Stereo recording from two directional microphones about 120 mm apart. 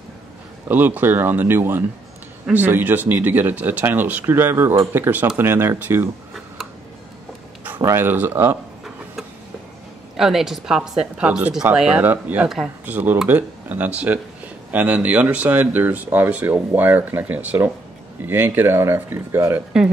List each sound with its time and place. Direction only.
0.7 s speech: 15° right (ahead or behind)
7.8 s speech: 20° right (ahead or behind)
10.1 s speech: 5° right (ahead or behind); by 19.6 s 20° right (ahead or behind)